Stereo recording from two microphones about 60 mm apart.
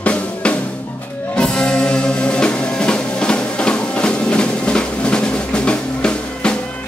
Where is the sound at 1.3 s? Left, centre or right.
Centre.